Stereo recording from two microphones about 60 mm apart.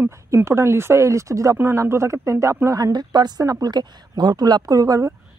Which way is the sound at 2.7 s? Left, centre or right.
Right.